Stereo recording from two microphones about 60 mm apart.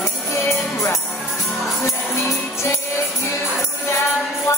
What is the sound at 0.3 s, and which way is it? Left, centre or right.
Music, left.